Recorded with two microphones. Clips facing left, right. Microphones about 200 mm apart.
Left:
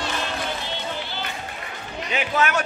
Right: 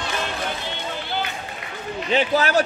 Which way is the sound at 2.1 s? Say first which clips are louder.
Right 4 dB; 35° right (ahead or behind).